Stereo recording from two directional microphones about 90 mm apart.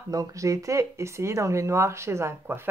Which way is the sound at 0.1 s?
40° right (ahead or behind).